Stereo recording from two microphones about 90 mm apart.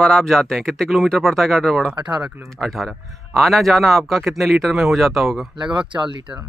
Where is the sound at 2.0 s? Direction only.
50° right (ahead or behind).